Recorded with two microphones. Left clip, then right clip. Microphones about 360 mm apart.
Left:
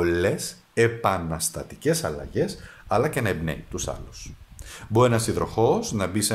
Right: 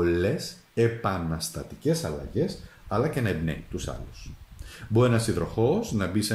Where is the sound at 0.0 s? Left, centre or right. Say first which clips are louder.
Left 2 dB; centre.